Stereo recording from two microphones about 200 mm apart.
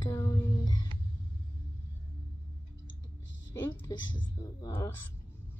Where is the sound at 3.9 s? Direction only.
70° left (ahead or behind).